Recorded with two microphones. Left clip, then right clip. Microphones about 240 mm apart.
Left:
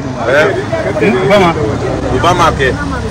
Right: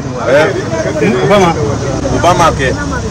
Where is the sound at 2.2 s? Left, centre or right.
Right.